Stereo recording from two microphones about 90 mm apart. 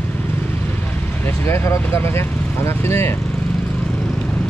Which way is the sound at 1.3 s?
30° left (ahead or behind).